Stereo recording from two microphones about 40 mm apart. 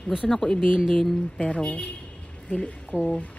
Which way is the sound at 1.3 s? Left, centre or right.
Left.